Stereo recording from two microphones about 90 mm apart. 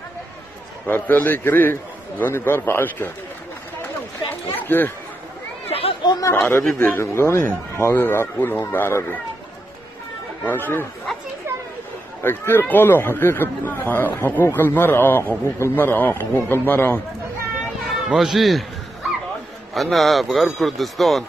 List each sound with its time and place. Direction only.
0.8 s speech: 20° left (ahead or behind)
4.5 s speech: 20° left (ahead or behind)
5.7 s chatter: 90° left
6.0 s chatter: 45° left (ahead or behind)
6.7 s speech: 25° left (ahead or behind)
10.4 s speech: 25° left (ahead or behind)
12.2 s speech: 25° left (ahead or behind)
17.8 s speech: 5° right (ahead or behind)
19.7 s speech: centre (ahead or behind)